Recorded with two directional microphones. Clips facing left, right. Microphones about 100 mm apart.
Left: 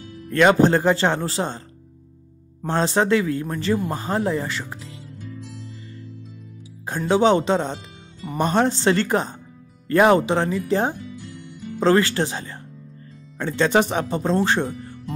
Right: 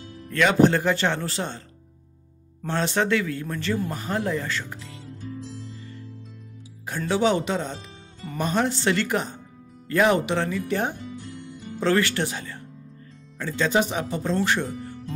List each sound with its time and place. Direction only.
0.3 s speech: 40° left (ahead or behind)
0.7 s speech: 30° left (ahead or behind)
2.7 s speech: 25° left (ahead or behind)
6.9 s speech: 25° left (ahead or behind)
8.5 s speech: 45° left (ahead or behind)
8.9 s speech: 35° left (ahead or behind)
9.8 s speech: 45° left (ahead or behind)
10.1 s speech: 25° left (ahead or behind)
13.4 s speech: 50° left (ahead or behind)
14.2 s speech: 25° left (ahead or behind)